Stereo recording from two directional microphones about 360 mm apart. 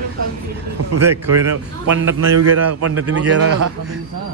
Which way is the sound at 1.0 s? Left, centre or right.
Centre.